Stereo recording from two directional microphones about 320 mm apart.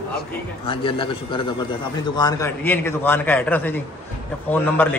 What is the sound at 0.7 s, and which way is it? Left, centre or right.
A man's voice, centre.